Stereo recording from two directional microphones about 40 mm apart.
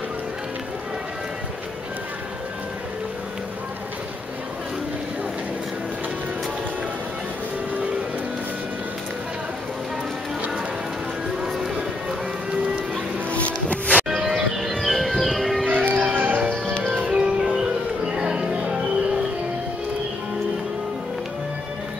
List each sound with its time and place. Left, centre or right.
11.4 s music: centre
13.3 s music: left
14.0 s music: centre
14.7 s music: centre
15.8 s music: right
16.1 s music: right
17.1 s music: centre